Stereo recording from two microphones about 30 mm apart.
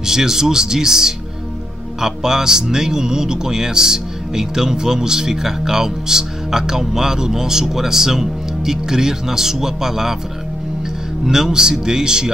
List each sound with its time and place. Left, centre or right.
0.0 s a man's voice: centre
11.2 s speech: centre